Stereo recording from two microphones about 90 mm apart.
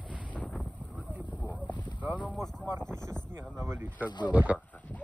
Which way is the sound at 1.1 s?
15° right (ahead or behind).